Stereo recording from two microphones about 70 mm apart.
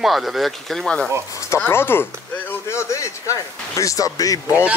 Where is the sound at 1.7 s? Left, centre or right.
Left.